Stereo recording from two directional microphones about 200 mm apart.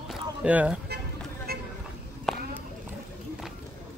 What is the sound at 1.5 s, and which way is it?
Vehicle, 50° right (ahead or behind).